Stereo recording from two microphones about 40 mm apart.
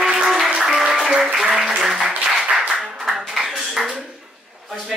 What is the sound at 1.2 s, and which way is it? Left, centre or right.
Speech, right.